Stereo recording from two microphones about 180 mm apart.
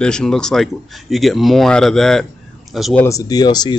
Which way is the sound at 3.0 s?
20° left (ahead or behind).